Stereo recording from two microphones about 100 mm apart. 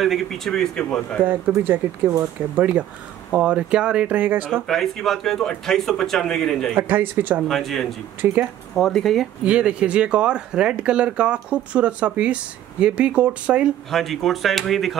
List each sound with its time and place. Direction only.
0.0 s a man's voice: centre (ahead or behind)
1.2 s speech: 20° right (ahead or behind)
4.6 s a man's voice: 5° left (ahead or behind)
6.8 s speech: 20° right (ahead or behind)
7.4 s a man's voice: centre (ahead or behind)
8.2 s speech: 20° right (ahead or behind)
8.7 s a man's voice: centre (ahead or behind)
9.5 s speech: 10° right (ahead or behind)
13.8 s a man's voice: centre (ahead or behind)